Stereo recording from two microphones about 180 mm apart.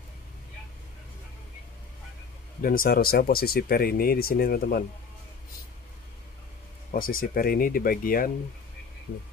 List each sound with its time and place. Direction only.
2.6 s speech: 50° left (ahead or behind)
6.9 s speech: 50° left (ahead or behind)